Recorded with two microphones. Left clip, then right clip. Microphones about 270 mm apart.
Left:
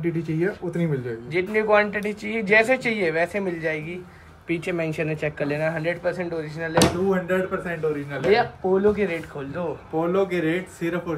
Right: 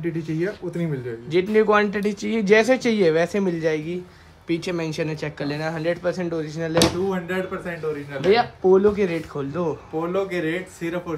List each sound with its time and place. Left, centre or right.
0.0 s speech: centre
1.3 s a man's voice: right
6.8 s speech: centre
8.9 s a man's voice: right
10.0 s speech: centre